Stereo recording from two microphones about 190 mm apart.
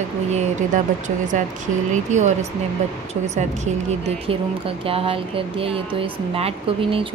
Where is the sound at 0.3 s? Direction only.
40° right (ahead or behind).